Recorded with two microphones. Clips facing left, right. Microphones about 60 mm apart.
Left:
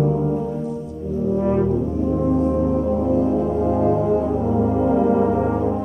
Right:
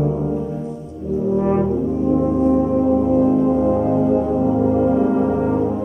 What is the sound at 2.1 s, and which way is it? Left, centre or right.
Music, centre.